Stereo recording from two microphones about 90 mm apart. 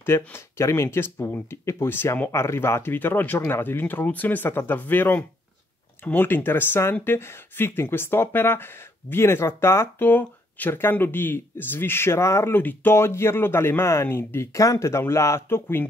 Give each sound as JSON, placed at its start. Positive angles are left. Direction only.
{"t": 0.0, "sound": "speech", "side_deg": 30}